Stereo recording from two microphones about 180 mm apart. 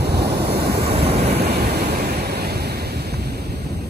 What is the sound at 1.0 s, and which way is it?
Vehicle, 35° right (ahead or behind).